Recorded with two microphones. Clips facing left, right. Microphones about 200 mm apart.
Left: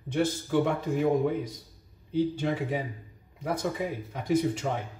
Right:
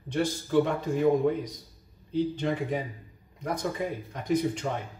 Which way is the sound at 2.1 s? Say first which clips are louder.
Even; 5° left (ahead or behind).